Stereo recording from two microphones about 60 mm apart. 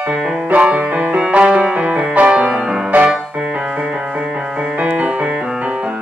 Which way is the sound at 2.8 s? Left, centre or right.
Right.